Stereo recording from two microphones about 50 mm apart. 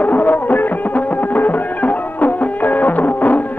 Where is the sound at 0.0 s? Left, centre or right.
Left.